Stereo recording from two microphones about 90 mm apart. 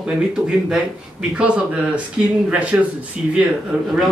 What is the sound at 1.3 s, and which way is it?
A man's voice, 10° right (ahead or behind).